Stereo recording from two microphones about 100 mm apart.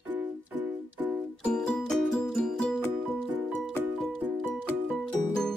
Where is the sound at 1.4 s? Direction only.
10° left (ahead or behind).